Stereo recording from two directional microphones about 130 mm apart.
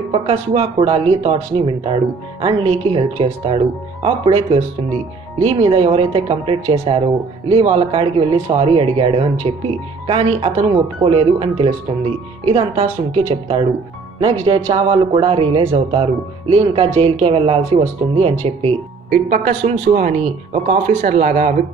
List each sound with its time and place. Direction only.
0.1 s speech: 50° right (ahead or behind)
10.6 s speech: 45° right (ahead or behind)
14.7 s speech: 40° right (ahead or behind)
19.0 s speech: 90° right